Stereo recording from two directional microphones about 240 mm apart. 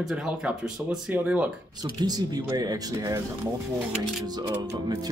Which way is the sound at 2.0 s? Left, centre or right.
Centre.